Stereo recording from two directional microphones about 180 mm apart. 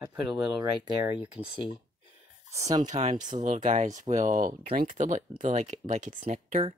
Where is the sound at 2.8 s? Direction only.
45° right (ahead or behind).